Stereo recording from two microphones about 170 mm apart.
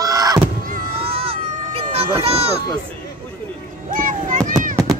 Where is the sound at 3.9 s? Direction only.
50° right (ahead or behind).